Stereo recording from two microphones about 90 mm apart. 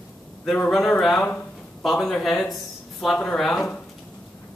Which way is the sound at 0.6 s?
5° left (ahead or behind).